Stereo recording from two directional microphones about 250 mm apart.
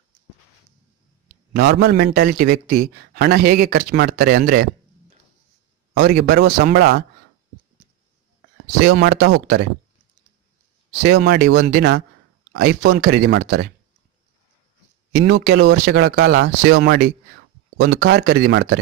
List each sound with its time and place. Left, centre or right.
1.5 s speech: right
5.9 s speech: right
8.6 s speech: right
9.0 s speech: right
11.0 s speech: right
15.1 s speech: right